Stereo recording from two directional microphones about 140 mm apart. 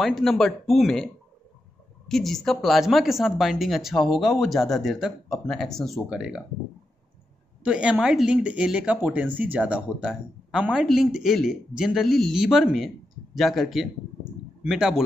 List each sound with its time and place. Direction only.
0.0 s speech: centre (ahead or behind)
7.6 s speech: 5° right (ahead or behind)